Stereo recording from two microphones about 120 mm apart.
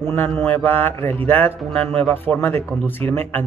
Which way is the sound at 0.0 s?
20° left (ahead or behind).